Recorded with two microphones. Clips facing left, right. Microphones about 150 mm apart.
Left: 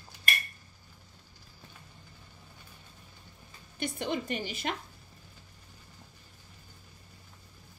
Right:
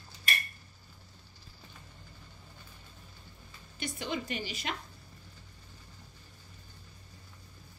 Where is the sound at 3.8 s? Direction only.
55° left (ahead or behind).